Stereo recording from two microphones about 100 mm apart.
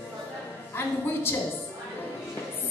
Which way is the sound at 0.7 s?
25° left (ahead or behind).